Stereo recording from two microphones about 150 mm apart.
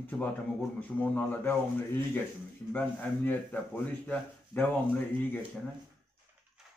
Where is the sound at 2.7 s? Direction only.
10° left (ahead or behind).